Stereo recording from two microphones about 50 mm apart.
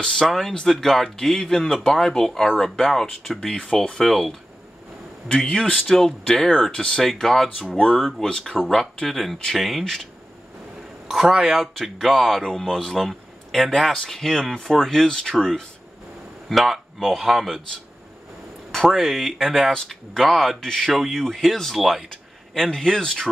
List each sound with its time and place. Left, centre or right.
0.1 s speech: centre
3.5 s speech: centre
4.0 s speech: centre
11.1 s a man's voice: centre
11.6 s speech: centre
16.4 s speech: centre
18.7 s speech: centre
22.1 s speech: centre